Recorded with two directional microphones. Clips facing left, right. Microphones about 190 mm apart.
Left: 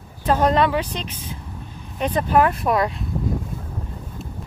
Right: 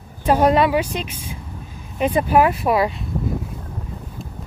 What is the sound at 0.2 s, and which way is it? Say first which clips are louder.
A woman's voice: right 2 dB; 10° right (ahead or behind).